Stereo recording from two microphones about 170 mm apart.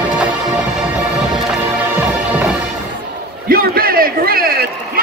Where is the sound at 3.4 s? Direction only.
60° right (ahead or behind).